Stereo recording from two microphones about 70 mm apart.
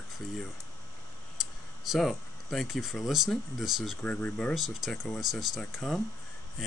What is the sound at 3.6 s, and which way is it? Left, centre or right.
Speech, centre.